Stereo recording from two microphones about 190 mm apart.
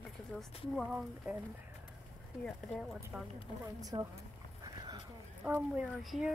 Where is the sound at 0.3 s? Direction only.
Centre (ahead or behind).